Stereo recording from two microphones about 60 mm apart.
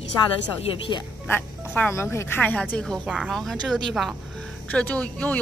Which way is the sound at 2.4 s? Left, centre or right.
Left.